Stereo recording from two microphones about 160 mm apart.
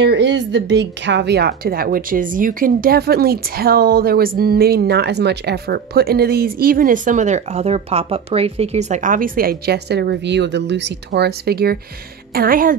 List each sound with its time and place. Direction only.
0.0 s a woman's voice: 90° right; by 11.8 s 75° right (ahead or behind)
12.4 s a woman's voice: 60° right (ahead or behind)